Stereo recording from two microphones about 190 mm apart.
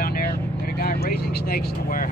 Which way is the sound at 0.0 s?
50° left (ahead or behind).